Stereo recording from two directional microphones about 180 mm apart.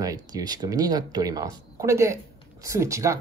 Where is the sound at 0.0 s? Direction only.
20° right (ahead or behind).